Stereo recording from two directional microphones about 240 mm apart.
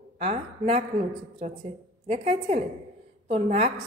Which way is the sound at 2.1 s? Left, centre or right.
Right.